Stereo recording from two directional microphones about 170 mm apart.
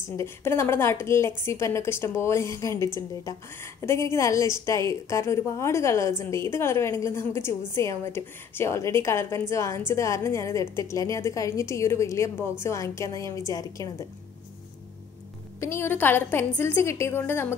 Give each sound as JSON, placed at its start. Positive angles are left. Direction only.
{"t": 0.2, "sound": "a woman's voice", "side_deg": 15}
{"t": 15.6, "sound": "a woman's voice", "side_deg": 15}